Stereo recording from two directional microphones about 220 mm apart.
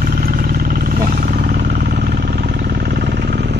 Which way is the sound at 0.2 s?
40° right (ahead or behind).